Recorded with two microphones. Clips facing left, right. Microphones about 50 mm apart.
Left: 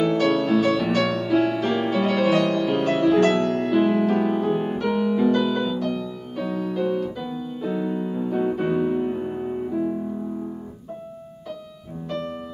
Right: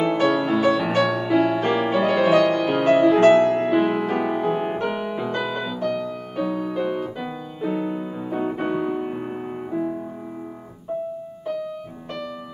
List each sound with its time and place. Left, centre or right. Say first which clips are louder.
0.0 s music: even; right